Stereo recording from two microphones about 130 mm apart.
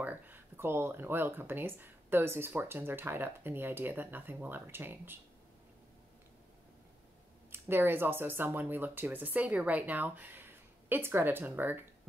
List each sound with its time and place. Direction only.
0.0 s speech: 15° right (ahead or behind)
7.5 s speech: 15° right (ahead or behind)